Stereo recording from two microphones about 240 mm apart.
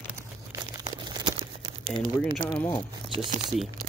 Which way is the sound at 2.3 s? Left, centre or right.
Centre.